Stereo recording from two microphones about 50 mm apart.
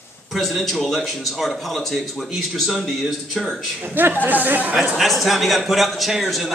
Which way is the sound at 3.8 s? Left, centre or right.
Right.